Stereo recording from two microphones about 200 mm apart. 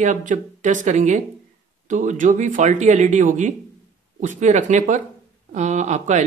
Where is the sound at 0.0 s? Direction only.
40° right (ahead or behind).